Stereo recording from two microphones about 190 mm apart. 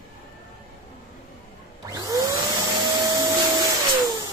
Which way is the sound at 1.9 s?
20° right (ahead or behind).